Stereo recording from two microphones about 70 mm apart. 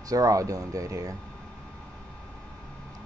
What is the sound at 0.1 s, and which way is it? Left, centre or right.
Speech, right.